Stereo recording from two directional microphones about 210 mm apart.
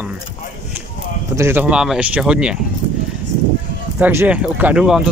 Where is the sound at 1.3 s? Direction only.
10° right (ahead or behind).